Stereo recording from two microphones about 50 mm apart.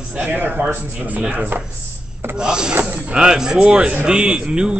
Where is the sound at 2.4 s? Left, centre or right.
Centre.